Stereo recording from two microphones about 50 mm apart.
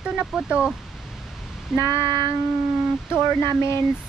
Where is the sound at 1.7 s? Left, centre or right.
Centre.